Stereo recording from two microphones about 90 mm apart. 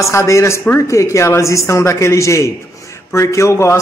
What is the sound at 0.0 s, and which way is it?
A woman's voice, 30° left (ahead or behind).